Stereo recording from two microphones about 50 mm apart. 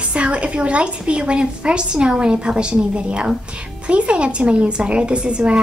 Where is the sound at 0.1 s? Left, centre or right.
Right.